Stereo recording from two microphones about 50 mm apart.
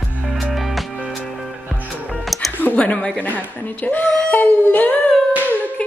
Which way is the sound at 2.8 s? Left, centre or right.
Left.